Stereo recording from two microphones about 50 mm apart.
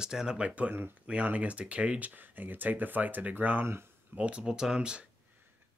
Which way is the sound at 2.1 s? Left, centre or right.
Right.